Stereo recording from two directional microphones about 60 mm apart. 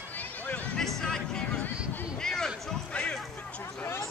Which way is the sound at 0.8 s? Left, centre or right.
Centre.